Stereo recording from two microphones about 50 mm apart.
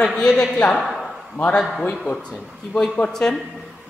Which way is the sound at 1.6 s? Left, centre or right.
Centre.